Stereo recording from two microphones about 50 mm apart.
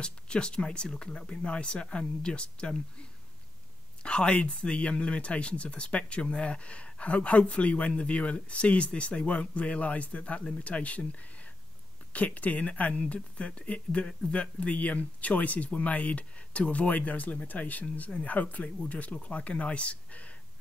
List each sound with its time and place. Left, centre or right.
0.0 s speech: centre